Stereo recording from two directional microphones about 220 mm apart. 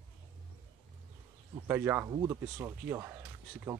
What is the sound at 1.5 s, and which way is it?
Speech, 10° right (ahead or behind).